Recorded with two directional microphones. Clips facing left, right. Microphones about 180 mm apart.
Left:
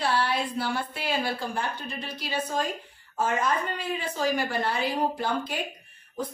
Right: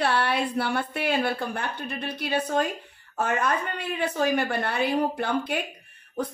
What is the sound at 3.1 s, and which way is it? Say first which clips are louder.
A woman's voice: right 1 dB; 65° right (ahead or behind).